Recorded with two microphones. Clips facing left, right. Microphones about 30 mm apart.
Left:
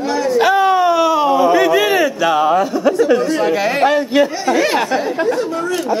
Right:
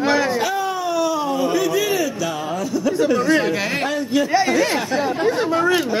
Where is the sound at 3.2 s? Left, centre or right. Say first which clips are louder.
Left 3 dB; centre.